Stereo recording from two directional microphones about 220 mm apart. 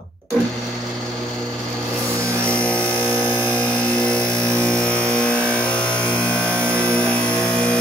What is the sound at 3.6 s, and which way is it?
Vehicle, 5° left (ahead or behind).